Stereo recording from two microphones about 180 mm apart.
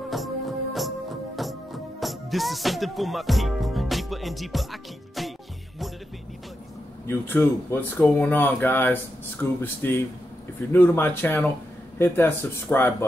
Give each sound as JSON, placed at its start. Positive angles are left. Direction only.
{"t": 0.1, "sound": "music", "side_deg": 0}
{"t": 7.1, "sound": "speech", "side_deg": 10}